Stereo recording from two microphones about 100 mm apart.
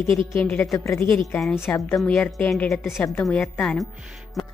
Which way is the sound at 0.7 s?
30° left (ahead or behind).